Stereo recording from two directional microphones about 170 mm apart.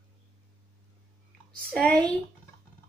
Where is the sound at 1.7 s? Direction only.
5° left (ahead or behind).